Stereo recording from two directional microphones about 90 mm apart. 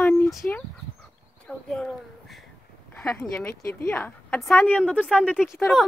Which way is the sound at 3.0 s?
15° left (ahead or behind).